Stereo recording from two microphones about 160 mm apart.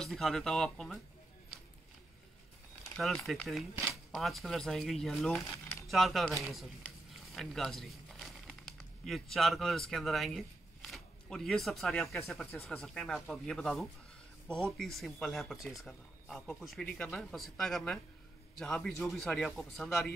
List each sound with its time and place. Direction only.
0.0 s speech: centre (ahead or behind)
3.0 s speech: centre (ahead or behind)
5.5 s a sound: 20° left (ahead or behind)
5.9 s speech: centre (ahead or behind)